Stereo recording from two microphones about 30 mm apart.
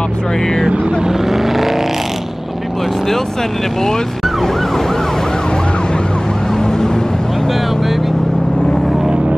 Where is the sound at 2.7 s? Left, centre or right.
Centre.